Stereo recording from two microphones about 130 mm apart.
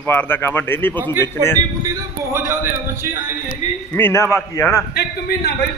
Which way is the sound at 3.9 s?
20° left (ahead or behind).